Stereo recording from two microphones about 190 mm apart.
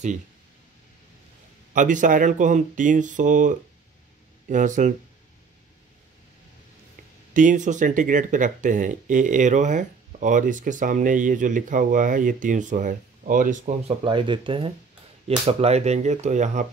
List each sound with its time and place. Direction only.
1.7 s speech: 40° right (ahead or behind)
7.3 s speech: 40° right (ahead or behind)
14.0 s speech: 25° right (ahead or behind)